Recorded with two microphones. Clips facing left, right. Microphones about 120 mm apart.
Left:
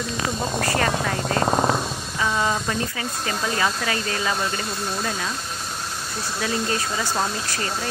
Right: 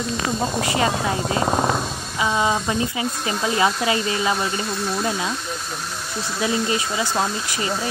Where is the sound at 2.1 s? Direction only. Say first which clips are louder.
Right 3 dB; 15° right (ahead or behind).